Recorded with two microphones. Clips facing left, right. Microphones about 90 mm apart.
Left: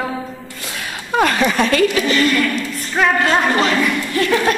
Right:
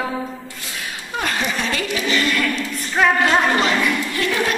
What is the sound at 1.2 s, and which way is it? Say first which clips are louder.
Speech: left 8 dB; 75° left (ahead or behind).